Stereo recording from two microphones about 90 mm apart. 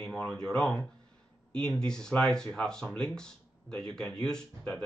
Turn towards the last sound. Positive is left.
turn(degrees=10)  # may be behind; listen again after turning